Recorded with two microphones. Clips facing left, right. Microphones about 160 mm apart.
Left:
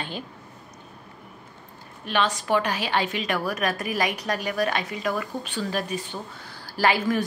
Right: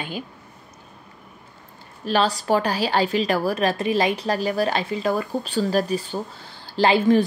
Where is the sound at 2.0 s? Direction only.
35° right (ahead or behind).